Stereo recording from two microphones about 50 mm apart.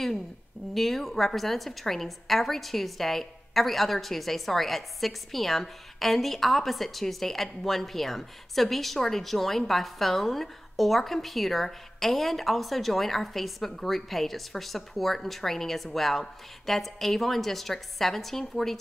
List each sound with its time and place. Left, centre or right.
0.7 s a woman's voice: centre